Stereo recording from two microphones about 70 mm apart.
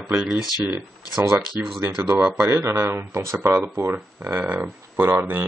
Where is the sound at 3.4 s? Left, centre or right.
Right.